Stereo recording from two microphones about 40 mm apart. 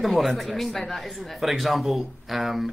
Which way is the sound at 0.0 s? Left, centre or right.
Centre.